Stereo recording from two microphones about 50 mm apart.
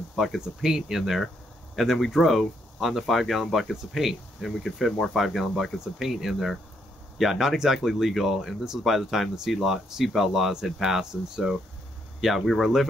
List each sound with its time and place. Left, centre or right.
0.1 s speech: centre